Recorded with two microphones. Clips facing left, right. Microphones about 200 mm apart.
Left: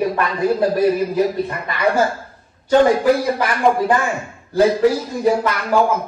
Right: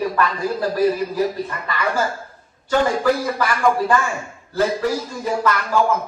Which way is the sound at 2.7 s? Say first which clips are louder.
Left 5 dB; 20° left (ahead or behind).